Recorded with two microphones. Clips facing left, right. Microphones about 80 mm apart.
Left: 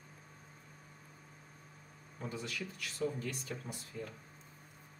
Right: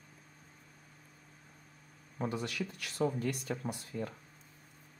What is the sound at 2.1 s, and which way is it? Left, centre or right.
Speech, right.